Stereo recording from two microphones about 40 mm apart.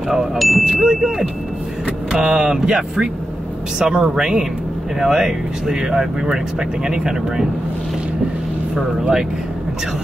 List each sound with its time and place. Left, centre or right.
0.1 s speech: centre
0.7 s speech: centre
2.1 s speech: centre